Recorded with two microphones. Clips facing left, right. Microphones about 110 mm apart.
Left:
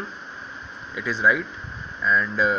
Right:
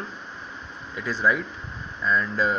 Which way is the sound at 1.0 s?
40° right (ahead or behind).